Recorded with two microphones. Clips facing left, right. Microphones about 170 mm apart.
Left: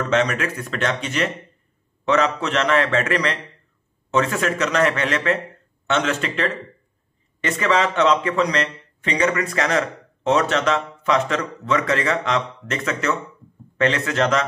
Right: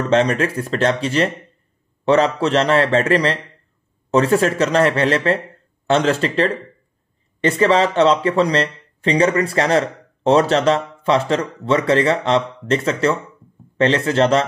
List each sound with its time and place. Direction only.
0.1 s speech: 35° right (ahead or behind)